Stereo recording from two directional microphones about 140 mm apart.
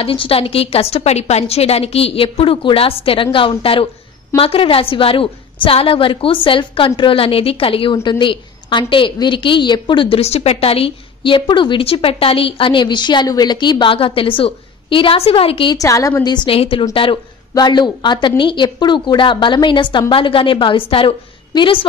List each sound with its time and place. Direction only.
0.0 s a woman's voice: 40° left (ahead or behind)
15.8 s a woman's voice: 25° left (ahead or behind)
16.3 s a woman's voice: 40° left (ahead or behind)